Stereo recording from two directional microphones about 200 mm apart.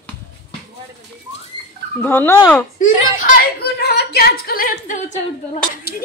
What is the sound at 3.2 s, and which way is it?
A woman's voice, 50° left (ahead or behind).